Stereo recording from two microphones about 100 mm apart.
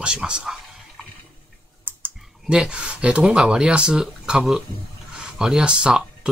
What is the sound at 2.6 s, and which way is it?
Speech, 10° right (ahead or behind).